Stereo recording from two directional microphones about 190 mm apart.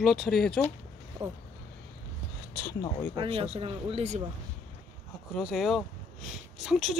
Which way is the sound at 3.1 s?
30° right (ahead or behind).